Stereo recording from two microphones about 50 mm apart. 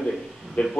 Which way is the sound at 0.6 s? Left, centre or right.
Left.